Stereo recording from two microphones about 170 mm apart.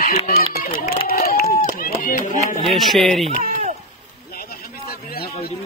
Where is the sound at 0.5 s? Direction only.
60° left (ahead or behind).